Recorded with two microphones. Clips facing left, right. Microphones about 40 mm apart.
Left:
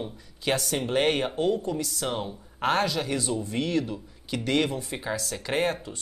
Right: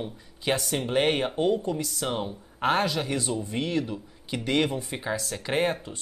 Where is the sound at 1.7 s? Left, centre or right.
Centre.